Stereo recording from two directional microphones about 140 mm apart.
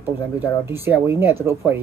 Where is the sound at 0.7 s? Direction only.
15° right (ahead or behind).